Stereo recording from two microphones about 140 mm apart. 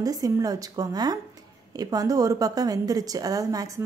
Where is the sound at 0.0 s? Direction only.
25° right (ahead or behind).